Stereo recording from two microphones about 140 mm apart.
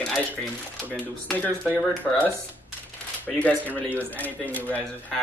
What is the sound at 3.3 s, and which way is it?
Speech, 10° left (ahead or behind).